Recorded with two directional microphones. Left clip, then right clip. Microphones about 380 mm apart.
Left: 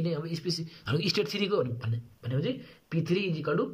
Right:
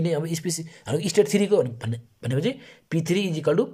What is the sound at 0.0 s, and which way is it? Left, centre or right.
Speech, right.